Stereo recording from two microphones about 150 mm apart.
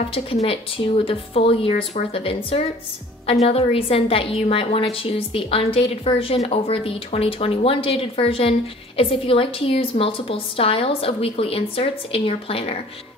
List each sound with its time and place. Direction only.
0.1 s a woman's voice: 40° left (ahead or behind)